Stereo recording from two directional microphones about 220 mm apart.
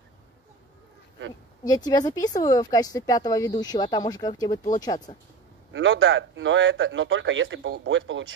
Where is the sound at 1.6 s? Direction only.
15° left (ahead or behind).